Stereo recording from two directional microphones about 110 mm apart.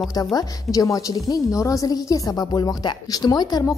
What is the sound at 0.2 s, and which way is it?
A woman's voice, 35° left (ahead or behind).